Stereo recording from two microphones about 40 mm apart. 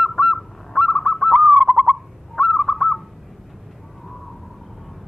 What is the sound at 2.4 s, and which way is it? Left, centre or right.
Owl, centre.